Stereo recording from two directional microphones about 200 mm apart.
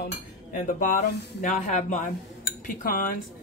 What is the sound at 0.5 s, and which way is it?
Speech, 45° left (ahead or behind).